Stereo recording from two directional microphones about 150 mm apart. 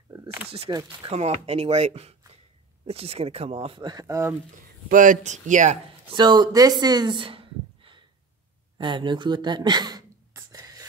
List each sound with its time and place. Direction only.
0.1 s a sound: 20° right (ahead or behind)
0.7 s speech: 25° right (ahead or behind)
1.1 s speech: 45° right (ahead or behind); by 4.4 s 20° right (ahead or behind)
4.8 s speech: 60° right (ahead or behind)
6.0 s speech: 30° right (ahead or behind)
8.7 s a sound: 30° right (ahead or behind)